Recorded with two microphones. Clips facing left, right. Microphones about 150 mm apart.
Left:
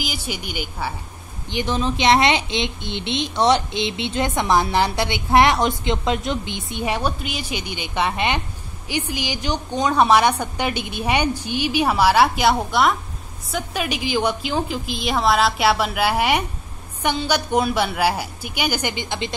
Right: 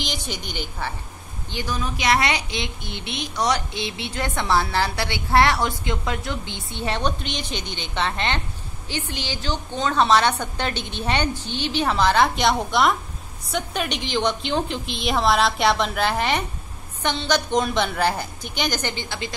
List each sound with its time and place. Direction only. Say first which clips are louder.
0.0 s a woman's voice: left 2 dB; 5° left (ahead or behind)
1.5 s a woman's voice: left 6 dB; 20° left (ahead or behind)